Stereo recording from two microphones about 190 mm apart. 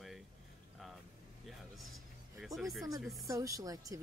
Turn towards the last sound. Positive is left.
turn(degrees=-20)  # may be behind; listen again after turning